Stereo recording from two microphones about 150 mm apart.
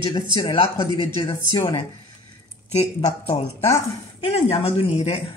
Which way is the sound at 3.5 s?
20° left (ahead or behind).